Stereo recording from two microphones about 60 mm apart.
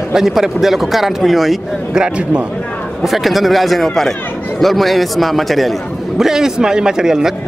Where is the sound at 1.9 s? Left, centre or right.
Centre.